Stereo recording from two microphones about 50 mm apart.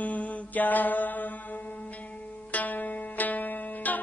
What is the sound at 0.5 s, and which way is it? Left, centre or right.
Mantra, left.